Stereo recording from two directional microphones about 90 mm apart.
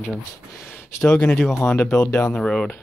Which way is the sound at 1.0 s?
10° left (ahead or behind).